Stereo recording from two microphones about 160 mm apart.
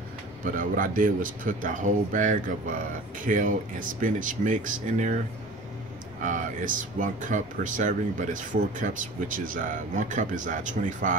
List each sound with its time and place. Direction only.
0.4 s speech: 55° right (ahead or behind)
6.2 s speech: 55° right (ahead or behind)